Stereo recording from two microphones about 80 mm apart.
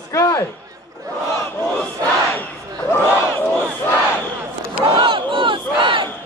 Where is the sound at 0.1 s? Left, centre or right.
Left.